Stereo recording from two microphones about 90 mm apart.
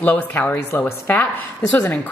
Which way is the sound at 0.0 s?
20° left (ahead or behind).